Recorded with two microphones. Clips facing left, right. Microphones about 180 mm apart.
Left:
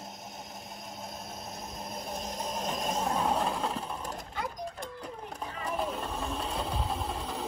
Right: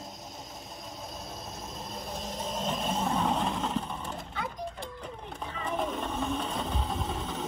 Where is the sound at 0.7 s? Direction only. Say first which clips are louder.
Right 1 dB; centre (ahead or behind).